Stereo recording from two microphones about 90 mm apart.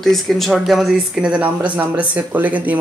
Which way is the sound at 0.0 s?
Centre (ahead or behind).